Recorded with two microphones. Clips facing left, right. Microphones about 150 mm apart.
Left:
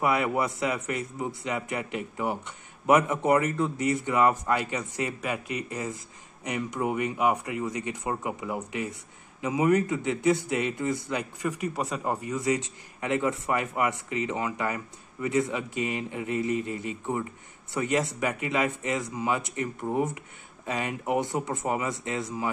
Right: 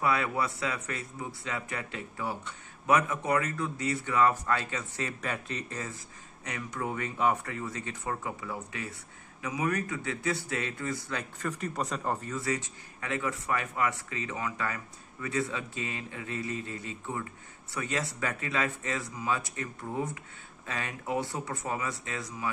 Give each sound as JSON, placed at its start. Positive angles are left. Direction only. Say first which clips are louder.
{"t": 0.0, "sound": "speech", "louder": "left 4 dB", "side_deg": 20}